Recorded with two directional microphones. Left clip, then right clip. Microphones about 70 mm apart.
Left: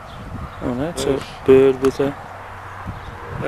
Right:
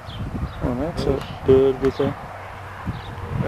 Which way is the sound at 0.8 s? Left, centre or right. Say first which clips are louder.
Left 3 dB; left.